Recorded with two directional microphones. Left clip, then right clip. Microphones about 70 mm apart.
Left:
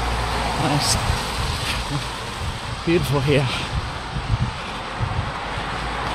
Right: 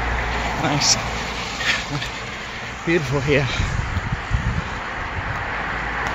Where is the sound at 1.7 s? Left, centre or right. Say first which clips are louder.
Right 3 dB; left.